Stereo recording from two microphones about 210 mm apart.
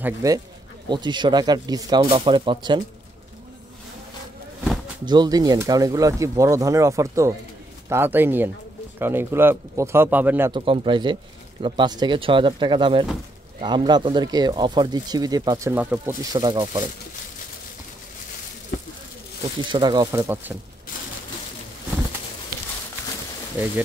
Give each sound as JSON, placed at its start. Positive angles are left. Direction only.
{"t": 0.0, "sound": "speech", "side_deg": -15}
{"t": 5.0, "sound": "speech", "side_deg": -20}
{"t": 10.5, "sound": "speech", "side_deg": -25}
{"t": 19.6, "sound": "speech", "side_deg": -20}